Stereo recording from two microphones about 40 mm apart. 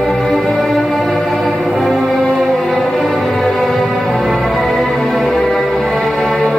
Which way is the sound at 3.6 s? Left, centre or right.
Centre.